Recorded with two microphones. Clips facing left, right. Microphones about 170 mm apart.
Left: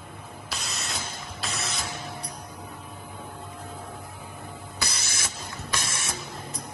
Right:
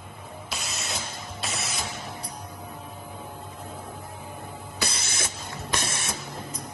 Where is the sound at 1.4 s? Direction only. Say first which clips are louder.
Even; 65° left (ahead or behind).